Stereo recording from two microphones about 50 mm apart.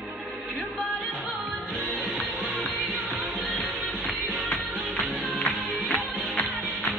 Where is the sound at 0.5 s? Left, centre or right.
Right.